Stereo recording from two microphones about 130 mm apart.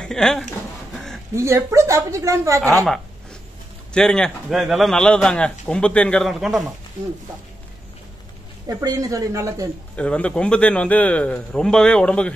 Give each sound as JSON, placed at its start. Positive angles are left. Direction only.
{"t": 0.0, "sound": "speech", "side_deg": 5}
{"t": 0.9, "sound": "a sound", "side_deg": 5}
{"t": 1.3, "sound": "speech", "side_deg": -20}
{"t": 3.9, "sound": "a man's voice", "side_deg": 5}
{"t": 8.6, "sound": "speech", "side_deg": -25}
{"t": 9.9, "sound": "a man's voice", "side_deg": 10}